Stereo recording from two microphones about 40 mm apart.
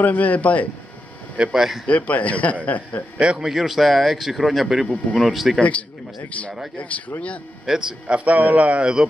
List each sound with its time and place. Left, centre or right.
0.0 s a man's voice: left
1.5 s a man's voice: centre
1.9 s a man's voice: left
3.2 s a man's voice: right
3.4 s speech: centre
5.6 s a man's voice: left
7.7 s a man's voice: centre
8.1 s speech: right